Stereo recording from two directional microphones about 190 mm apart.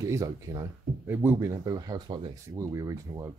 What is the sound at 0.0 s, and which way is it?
Speech, 20° right (ahead or behind).